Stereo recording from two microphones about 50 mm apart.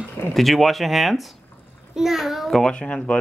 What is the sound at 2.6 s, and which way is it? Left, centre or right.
Speech, centre.